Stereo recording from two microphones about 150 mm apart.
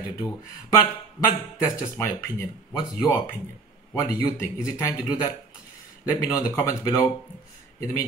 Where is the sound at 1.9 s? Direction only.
15° left (ahead or behind).